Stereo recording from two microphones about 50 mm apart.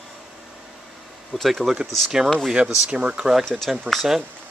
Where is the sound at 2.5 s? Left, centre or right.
Centre.